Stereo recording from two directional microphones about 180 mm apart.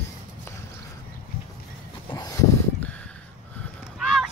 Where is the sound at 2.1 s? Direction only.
20° left (ahead or behind).